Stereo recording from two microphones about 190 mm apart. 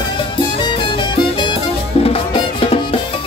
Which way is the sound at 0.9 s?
25° left (ahead or behind).